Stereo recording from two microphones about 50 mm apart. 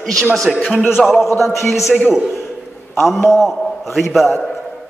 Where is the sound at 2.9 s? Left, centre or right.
Centre.